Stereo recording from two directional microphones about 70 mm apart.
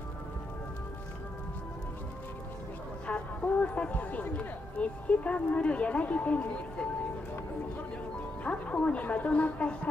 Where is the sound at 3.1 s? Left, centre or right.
Centre.